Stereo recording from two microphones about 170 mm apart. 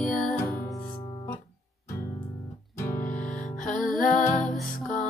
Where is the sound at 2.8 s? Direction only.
15° left (ahead or behind).